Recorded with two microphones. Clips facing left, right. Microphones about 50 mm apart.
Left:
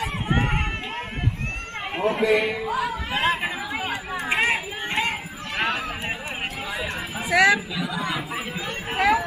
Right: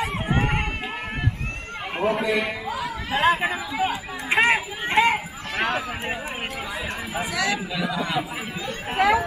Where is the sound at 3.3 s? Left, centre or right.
Centre.